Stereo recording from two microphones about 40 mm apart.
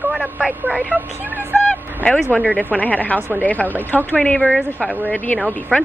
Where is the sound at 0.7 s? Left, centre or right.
Right.